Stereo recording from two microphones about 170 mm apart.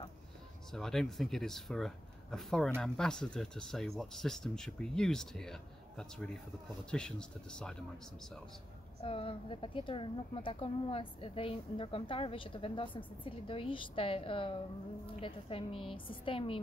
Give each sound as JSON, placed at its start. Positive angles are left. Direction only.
{"t": 0.7, "sound": "speech", "side_deg": 5}
{"t": 9.0, "sound": "a woman's voice", "side_deg": 35}